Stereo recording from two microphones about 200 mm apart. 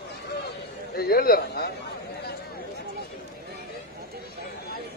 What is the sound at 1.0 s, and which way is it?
Speech, 50° left (ahead or behind).